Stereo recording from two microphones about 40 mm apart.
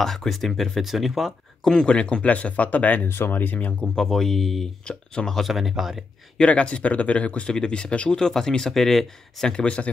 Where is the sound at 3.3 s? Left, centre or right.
Left.